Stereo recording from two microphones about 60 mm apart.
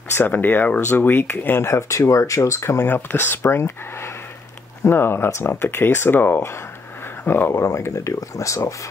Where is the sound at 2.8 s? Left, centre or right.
Left.